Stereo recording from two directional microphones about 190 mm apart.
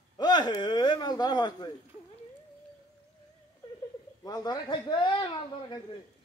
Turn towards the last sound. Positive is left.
turn(degrees=25)  # may be behind; listen again after turning